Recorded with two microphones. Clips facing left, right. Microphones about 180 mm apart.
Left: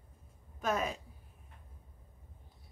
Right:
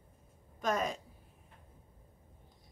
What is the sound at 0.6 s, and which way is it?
Speech, 5° left (ahead or behind).